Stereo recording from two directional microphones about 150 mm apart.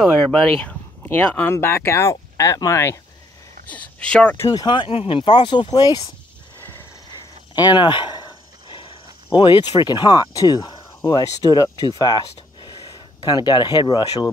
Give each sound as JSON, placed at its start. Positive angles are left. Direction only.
{"t": 0.3, "sound": "speech", "side_deg": 10}
{"t": 4.5, "sound": "speech", "side_deg": 30}
{"t": 7.7, "sound": "speech", "side_deg": 35}
{"t": 8.6, "sound": "a sound", "side_deg": 35}
{"t": 9.4, "sound": "speech", "side_deg": 30}
{"t": 12.7, "sound": "a sound", "side_deg": -30}
{"t": 13.2, "sound": "speech", "side_deg": 30}